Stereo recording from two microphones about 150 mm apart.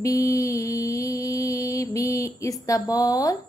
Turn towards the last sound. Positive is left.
turn(degrees=25)  # may be behind; listen again after turning